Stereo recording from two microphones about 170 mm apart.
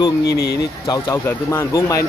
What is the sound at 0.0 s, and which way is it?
A man's voice, 20° left (ahead or behind).